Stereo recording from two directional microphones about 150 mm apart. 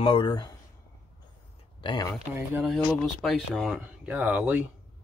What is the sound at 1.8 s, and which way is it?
Speech, 30° left (ahead or behind).